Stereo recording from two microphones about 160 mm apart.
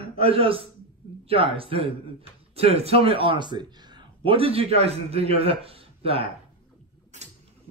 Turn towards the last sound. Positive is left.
turn(degrees=-35)  # may be behind; listen again after turning